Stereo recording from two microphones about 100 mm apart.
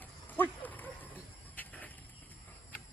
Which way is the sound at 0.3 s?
15° left (ahead or behind).